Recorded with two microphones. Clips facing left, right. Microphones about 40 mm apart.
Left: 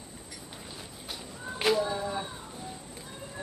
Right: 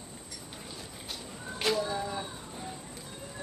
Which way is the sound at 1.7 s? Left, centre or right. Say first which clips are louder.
Left 3 dB; centre.